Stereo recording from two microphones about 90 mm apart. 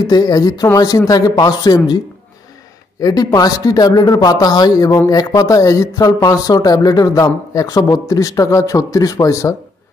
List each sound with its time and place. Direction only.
0.0 s a man's voice: 45° left (ahead or behind)
3.0 s a man's voice: 45° left (ahead or behind)